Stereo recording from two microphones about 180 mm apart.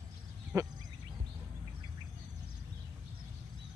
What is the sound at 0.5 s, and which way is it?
Speech, 15° right (ahead or behind).